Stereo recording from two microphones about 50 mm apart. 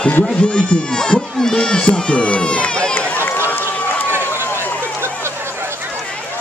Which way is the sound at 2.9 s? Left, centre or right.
Left.